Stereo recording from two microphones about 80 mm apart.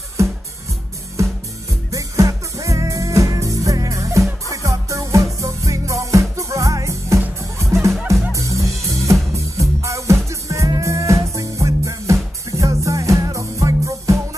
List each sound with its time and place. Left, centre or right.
1.2 s music: right